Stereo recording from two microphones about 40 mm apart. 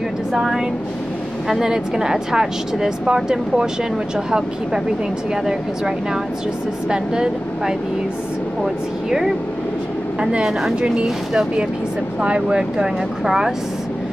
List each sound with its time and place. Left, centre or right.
0.3 s speech: centre
5.3 s speech: centre
11.1 s speech: centre
12.2 s speech: right